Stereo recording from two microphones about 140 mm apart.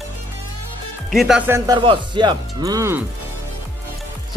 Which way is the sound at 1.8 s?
35° right (ahead or behind).